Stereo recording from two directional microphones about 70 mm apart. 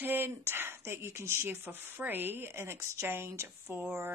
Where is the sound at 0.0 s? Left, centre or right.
Right.